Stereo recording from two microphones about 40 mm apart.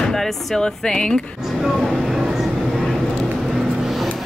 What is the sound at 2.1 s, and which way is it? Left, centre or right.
Train, centre.